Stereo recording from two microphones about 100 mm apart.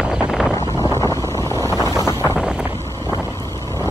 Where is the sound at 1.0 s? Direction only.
30° left (ahead or behind).